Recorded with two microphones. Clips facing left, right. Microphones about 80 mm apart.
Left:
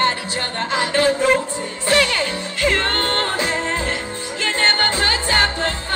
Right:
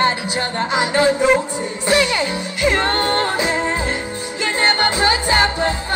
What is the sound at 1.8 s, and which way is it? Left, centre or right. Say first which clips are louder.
Music: right 1 dB; centre.